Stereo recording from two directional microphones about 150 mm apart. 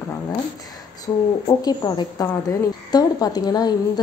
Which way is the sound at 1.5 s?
25° left (ahead or behind).